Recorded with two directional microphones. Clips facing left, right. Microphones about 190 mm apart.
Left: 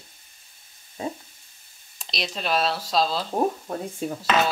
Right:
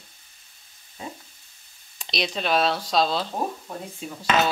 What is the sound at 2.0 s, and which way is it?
Speech, centre (ahead or behind).